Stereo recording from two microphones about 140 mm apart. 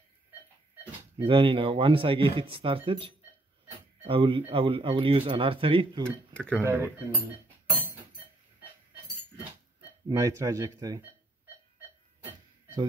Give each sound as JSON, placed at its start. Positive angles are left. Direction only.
{"t": 1.1, "sound": "speech", "side_deg": -35}
{"t": 6.0, "sound": "speech", "side_deg": 5}
{"t": 6.6, "sound": "speech", "side_deg": -15}
{"t": 10.0, "sound": "speech", "side_deg": -20}